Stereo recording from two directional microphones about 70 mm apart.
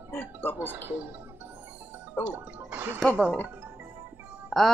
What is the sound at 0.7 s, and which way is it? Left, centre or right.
Speech, right.